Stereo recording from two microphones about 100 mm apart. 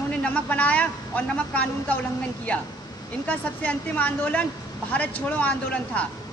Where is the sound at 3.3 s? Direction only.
15° left (ahead or behind).